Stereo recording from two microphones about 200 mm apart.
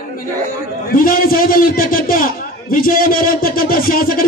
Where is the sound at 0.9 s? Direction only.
45° left (ahead or behind).